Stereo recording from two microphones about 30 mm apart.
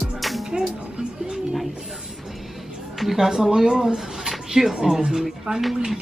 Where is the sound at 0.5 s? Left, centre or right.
Right.